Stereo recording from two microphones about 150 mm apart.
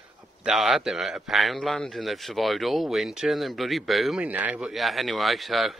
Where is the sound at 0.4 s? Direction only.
5° right (ahead or behind).